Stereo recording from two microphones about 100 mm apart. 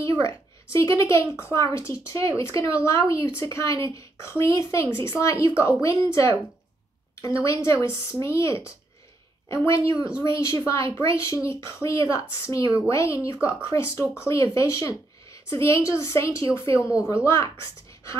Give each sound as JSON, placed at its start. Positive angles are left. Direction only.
{"t": 0.0, "sound": "a woman's voice", "side_deg": 30}
{"t": 9.9, "sound": "speech", "side_deg": -10}
{"t": 10.3, "sound": "a woman's voice", "side_deg": 30}